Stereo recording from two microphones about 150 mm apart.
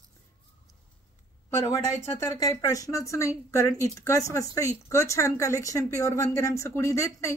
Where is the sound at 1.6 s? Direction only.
25° left (ahead or behind).